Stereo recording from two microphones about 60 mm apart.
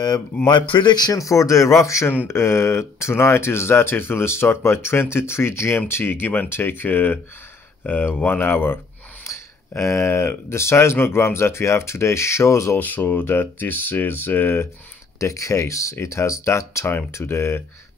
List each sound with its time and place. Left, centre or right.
1.0 s speech: left
2.2 s speech: left
9.2 s speech: left
12.7 s speech: left
15.1 s speech: left